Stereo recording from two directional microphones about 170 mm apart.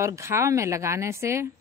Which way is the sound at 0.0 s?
15° right (ahead or behind).